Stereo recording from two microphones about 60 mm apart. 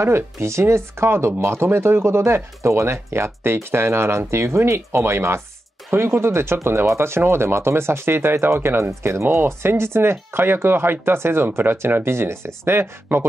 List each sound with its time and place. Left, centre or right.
0.0 s speech: right